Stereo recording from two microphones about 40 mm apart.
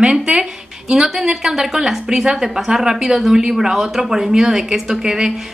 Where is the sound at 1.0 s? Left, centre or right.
Centre.